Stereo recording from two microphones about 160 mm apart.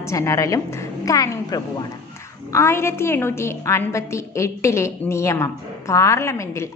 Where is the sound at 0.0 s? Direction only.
20° left (ahead or behind).